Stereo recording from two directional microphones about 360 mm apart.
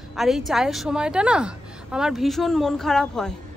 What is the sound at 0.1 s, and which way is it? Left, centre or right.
A woman's voice, centre.